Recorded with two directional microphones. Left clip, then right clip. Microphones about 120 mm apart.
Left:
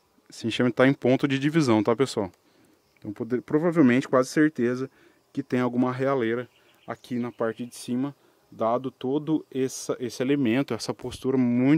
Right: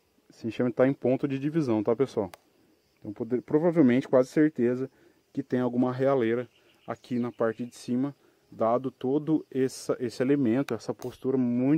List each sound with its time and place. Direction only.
0.4 s speech: 35° left (ahead or behind)
3.4 s speech: 25° left (ahead or behind)
4.4 s speech: 40° left (ahead or behind)
5.4 s speech: 20° left (ahead or behind); by 10.2 s 5° left (ahead or behind)
10.2 s speech: 15° left (ahead or behind)
11.1 s speech: 40° left (ahead or behind)